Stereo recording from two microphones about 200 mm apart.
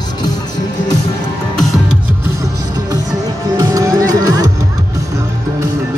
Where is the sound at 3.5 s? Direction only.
15° right (ahead or behind).